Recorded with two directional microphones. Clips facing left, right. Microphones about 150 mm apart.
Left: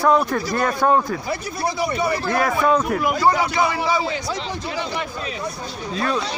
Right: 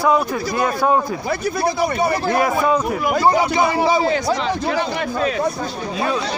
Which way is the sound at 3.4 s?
20° right (ahead or behind).